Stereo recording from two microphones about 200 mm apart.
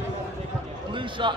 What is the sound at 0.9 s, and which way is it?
Speech, 25° right (ahead or behind).